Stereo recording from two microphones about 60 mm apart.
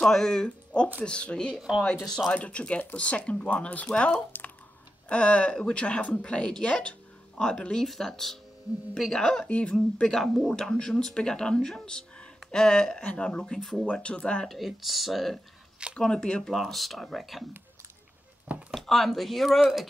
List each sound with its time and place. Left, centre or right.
0.0 s speech: centre
2.3 s speech: left; by 10.5 s centre
10.5 s speech: centre
14.5 s speech: centre
16.0 s speech: centre
16.5 s speech: centre
18.7 s speech: centre